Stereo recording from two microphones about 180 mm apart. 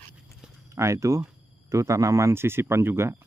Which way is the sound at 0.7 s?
15° right (ahead or behind).